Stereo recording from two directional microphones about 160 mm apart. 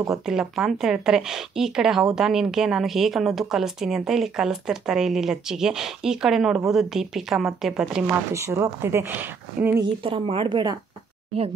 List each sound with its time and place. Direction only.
0.1 s a woman's voice: 5° right (ahead or behind)
8.3 s speech: 15° right (ahead or behind)
10.0 s speech: 35° right (ahead or behind)